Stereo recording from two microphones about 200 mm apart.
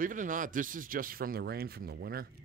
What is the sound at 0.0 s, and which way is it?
A man's voice, 40° right (ahead or behind).